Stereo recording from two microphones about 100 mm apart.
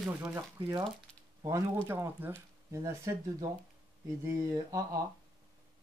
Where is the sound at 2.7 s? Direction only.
30° right (ahead or behind).